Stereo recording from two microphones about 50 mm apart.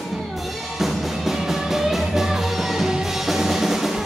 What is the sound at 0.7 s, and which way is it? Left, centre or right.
Music, centre.